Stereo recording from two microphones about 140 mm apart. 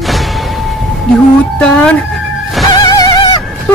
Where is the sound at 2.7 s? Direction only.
30° left (ahead or behind).